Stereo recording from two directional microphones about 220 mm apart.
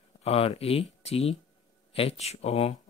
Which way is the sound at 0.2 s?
25° left (ahead or behind).